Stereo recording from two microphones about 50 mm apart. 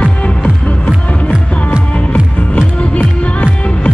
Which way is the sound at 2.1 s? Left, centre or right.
Left.